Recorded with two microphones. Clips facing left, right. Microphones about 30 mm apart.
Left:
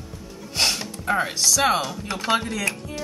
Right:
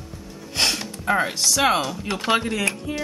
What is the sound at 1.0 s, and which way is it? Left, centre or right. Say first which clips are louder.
Chopping: right 2 dB; centre.